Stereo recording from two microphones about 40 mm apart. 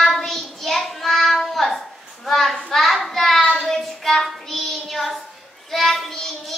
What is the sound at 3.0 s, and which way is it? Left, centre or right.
Child singing, centre.